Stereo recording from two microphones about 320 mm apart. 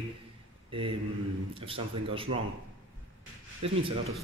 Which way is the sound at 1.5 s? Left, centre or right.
Centre.